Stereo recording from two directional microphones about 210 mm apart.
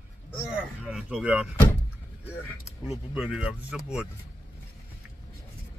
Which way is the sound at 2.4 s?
Centre (ahead or behind).